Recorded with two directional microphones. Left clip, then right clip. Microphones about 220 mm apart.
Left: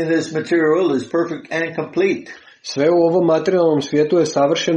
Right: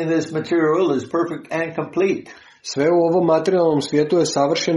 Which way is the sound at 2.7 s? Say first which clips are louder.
Left 2 dB; 20° right (ahead or behind).